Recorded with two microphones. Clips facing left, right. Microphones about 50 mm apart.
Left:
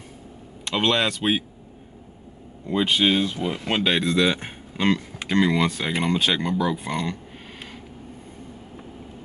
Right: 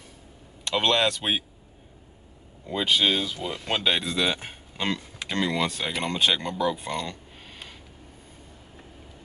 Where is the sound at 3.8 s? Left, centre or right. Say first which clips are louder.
Left 5 dB; centre.